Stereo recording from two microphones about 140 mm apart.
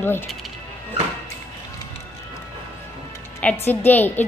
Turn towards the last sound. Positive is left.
turn(degrees=15)  # may be behind; listen again after turning